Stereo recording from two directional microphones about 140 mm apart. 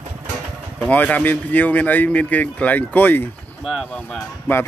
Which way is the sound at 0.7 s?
10° left (ahead or behind).